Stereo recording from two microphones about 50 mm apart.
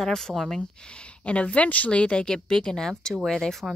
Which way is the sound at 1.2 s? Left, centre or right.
Left.